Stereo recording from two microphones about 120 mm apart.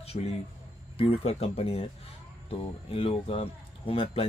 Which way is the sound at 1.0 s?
55° left (ahead or behind).